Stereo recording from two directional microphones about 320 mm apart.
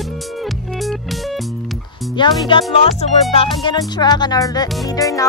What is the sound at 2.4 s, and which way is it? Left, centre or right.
A child's voice, centre.